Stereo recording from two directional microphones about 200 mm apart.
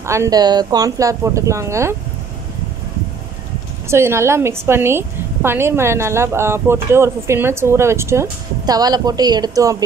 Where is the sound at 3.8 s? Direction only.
15° right (ahead or behind).